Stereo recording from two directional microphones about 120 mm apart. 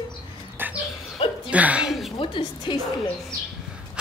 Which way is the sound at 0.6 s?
15° right (ahead or behind).